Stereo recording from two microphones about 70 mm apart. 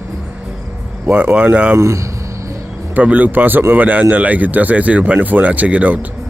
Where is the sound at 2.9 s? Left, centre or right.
Right.